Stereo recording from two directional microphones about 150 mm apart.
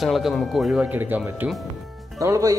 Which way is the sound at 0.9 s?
10° right (ahead or behind).